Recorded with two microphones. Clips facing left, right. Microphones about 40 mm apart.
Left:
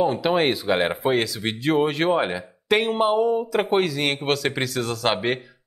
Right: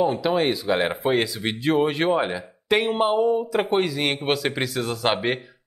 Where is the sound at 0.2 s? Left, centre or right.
Left.